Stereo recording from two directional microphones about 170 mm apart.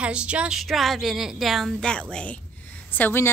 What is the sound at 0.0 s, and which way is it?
A woman's voice, 5° right (ahead or behind).